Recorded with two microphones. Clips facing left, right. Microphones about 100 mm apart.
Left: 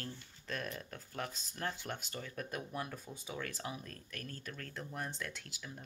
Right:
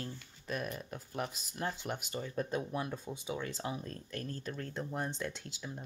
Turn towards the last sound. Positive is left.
turn(degrees=-25)  # may be behind; listen again after turning